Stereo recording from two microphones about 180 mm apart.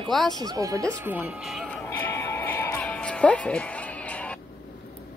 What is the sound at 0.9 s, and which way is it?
Music, 10° right (ahead or behind).